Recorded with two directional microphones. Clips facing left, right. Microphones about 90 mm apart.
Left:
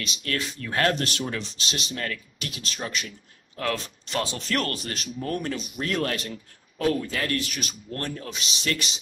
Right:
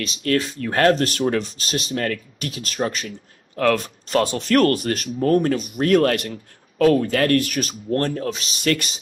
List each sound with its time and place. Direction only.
0.0 s speech: 40° right (ahead or behind)